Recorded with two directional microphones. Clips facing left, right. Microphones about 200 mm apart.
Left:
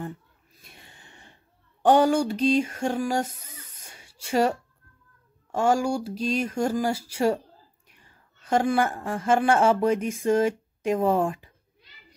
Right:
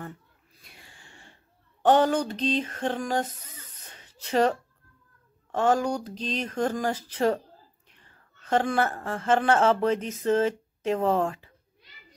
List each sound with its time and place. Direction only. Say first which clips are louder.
0.7 s snort: left 2 dB; 25° left (ahead or behind)
1.8 s a sound: left 2 dB; 10° left (ahead or behind)
5.5 s a woman's voice: left 1 dB; 10° left (ahead or behind)